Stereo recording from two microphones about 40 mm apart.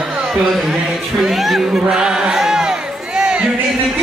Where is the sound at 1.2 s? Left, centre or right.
Centre.